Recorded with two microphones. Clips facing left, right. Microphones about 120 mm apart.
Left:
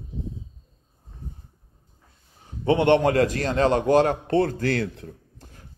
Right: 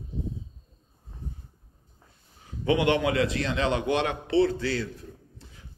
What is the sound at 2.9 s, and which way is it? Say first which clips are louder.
A man's voice: left 6 dB; 45° left (ahead or behind).